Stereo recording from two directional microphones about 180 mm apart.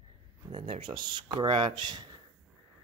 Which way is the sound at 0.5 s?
30° right (ahead or behind).